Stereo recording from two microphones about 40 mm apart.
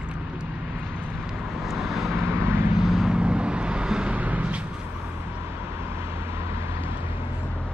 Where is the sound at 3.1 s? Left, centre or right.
Right.